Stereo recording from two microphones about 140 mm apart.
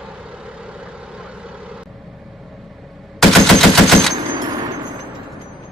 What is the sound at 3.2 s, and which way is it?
Machine gun, centre (ahead or behind).